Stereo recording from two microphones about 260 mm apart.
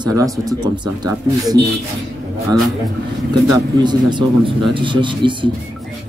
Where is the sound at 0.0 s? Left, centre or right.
Centre.